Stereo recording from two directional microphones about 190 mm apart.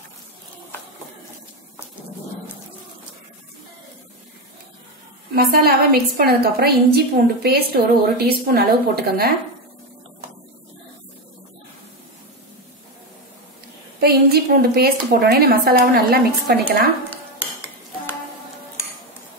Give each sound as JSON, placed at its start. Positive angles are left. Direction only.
{"t": 5.3, "sound": "a woman's voice", "side_deg": -55}
{"t": 13.9, "sound": "a woman's voice", "side_deg": -55}